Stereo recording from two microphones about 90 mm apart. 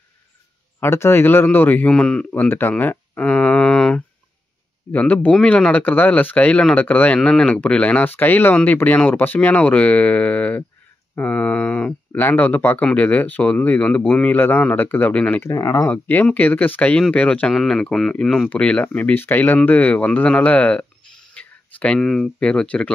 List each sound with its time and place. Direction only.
0.7 s speech: 30° left (ahead or behind); by 14.3 s 15° left (ahead or behind)
14.3 s speech: 25° left (ahead or behind)
15.4 s speech: 35° left (ahead or behind)
15.9 s speech: 15° left (ahead or behind)